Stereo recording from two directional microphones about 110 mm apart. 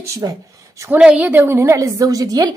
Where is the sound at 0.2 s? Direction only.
35° right (ahead or behind).